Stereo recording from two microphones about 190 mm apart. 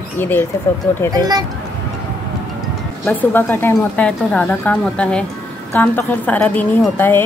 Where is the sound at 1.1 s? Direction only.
20° right (ahead or behind).